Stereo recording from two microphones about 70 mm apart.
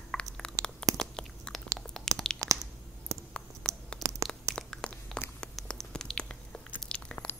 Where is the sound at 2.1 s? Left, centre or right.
Centre.